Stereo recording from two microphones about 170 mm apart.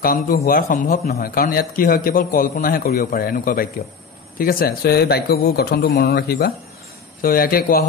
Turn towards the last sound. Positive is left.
turn(degrees=60)  # may be behind; listen again after turning